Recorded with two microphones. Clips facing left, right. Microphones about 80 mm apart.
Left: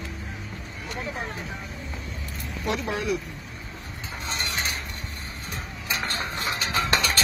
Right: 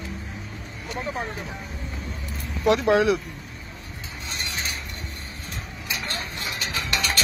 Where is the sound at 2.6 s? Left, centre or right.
Right.